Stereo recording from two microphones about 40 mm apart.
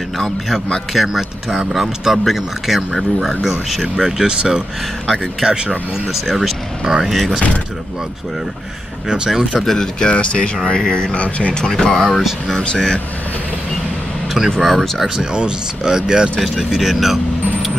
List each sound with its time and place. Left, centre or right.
0.9 s speech: centre
4.2 s speech: centre
9.3 s speech: centre
9.8 s speech: left
11.1 s speech: left
11.6 s speech: centre
12.1 s speech: centre
12.5 s speech: centre
14.6 s speech: centre
15.1 s speech: right; by 17.7 s centre